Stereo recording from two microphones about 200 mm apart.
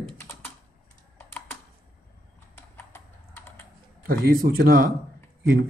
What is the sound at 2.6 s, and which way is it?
Typing, 10° left (ahead or behind).